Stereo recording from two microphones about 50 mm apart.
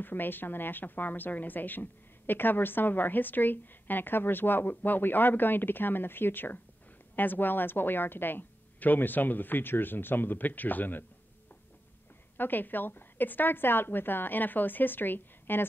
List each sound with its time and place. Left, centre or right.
0.0 s speech: left
12.4 s speech: left